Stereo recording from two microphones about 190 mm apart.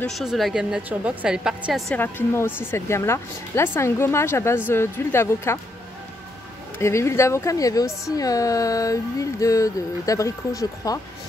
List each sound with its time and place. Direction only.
0.0 s a woman's voice: centre (ahead or behind)
2.0 s speech: 10° left (ahead or behind)
6.8 s speech: 15° left (ahead or behind)